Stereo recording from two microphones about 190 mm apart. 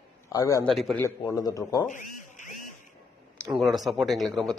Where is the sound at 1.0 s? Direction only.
20° left (ahead or behind).